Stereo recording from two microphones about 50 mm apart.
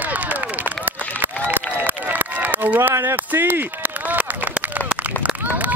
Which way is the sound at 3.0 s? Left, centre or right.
Right.